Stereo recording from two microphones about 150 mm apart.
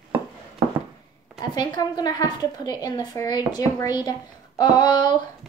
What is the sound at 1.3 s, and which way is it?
A woman's voice, 30° left (ahead or behind).